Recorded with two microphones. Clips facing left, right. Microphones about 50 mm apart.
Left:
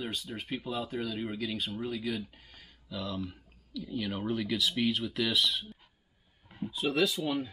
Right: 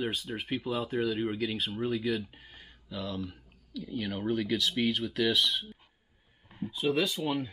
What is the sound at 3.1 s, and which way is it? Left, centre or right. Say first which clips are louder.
Speech: even; centre.